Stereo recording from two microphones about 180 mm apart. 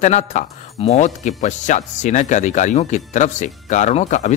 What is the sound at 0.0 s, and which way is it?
Speech, 40° left (ahead or behind).